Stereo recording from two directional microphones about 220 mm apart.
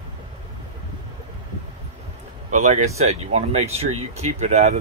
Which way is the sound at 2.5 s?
35° right (ahead or behind).